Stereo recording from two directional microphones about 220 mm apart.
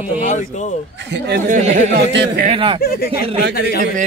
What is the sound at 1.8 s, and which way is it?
Speech, 50° right (ahead or behind).